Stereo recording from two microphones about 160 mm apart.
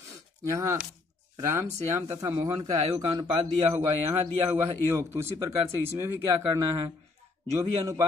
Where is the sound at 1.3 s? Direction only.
15° right (ahead or behind).